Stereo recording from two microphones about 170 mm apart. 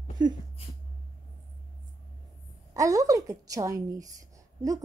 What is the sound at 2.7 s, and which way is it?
A woman's voice, 20° right (ahead or behind).